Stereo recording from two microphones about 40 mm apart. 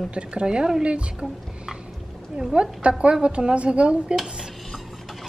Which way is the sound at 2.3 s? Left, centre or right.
Right.